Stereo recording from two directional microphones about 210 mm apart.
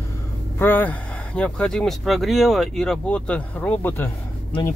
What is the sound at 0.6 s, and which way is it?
Speech, 10° left (ahead or behind).